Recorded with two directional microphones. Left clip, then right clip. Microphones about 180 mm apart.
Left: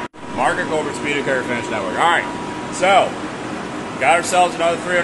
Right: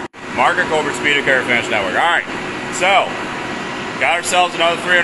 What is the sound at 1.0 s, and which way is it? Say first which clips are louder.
Speech: right 5 dB; 5° right (ahead or behind).